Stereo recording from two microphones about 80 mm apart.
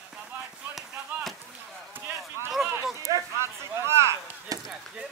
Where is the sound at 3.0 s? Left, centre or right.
Right.